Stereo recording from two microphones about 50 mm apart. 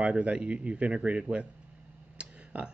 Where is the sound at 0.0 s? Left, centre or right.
Right.